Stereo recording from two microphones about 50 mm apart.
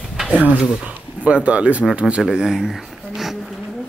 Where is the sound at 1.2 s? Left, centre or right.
Right.